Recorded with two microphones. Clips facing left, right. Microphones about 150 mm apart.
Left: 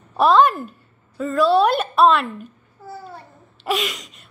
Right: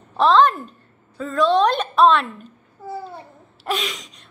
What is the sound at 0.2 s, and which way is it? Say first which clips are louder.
A woman's voice: even; 10° left (ahead or behind).